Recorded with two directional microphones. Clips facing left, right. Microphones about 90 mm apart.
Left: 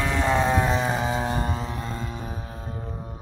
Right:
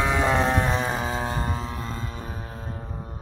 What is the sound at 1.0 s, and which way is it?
Music, 35° right (ahead or behind).